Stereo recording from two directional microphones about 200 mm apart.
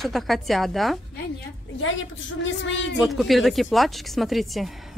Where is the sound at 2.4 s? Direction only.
70° left (ahead or behind).